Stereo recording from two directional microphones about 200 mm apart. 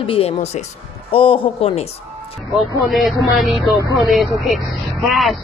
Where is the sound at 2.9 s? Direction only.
Centre (ahead or behind).